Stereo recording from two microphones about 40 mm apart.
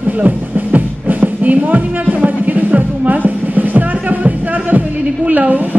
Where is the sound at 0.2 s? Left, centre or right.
Right.